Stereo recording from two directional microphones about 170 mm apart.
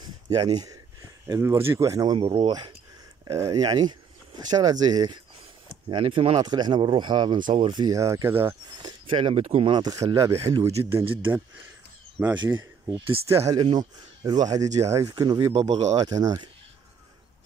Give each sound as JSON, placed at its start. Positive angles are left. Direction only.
{"t": 0.0, "sound": "a sound", "side_deg": -25}
{"t": 1.2, "sound": "speech", "side_deg": -15}
{"t": 2.1, "sound": "speech", "side_deg": -30}
{"t": 8.8, "sound": "speech", "side_deg": -30}
{"t": 12.4, "sound": "speech", "side_deg": -15}
{"t": 12.9, "sound": "speech", "side_deg": -30}
{"t": 13.3, "sound": "speech", "side_deg": -15}
{"t": 13.6, "sound": "speech", "side_deg": -25}